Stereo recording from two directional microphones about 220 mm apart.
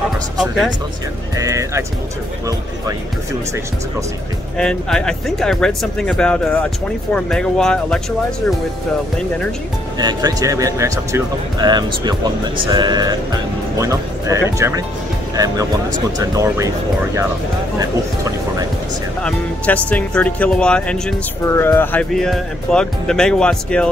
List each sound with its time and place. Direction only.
1.3 s speech: 15° right (ahead or behind)
4.6 s speech: 5° left (ahead or behind)
9.9 s speech: 20° right (ahead or behind)
17.7 s music: 15° right (ahead or behind)
19.2 s speech: 5° left (ahead or behind)